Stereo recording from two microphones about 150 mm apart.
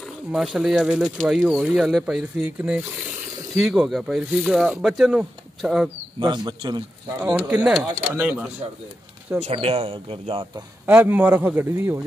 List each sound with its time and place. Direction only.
0.0 s speech: 5° right (ahead or behind)
6.1 s speech: 30° right (ahead or behind)
7.3 s speech: 10° right (ahead or behind)
9.4 s speech: 45° right (ahead or behind)
10.9 s speech: 15° right (ahead or behind)